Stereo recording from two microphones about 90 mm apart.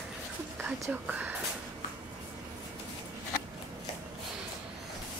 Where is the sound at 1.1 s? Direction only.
20° right (ahead or behind).